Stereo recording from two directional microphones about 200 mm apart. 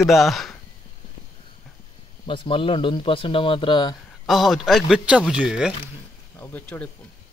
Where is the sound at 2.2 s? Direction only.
25° left (ahead or behind).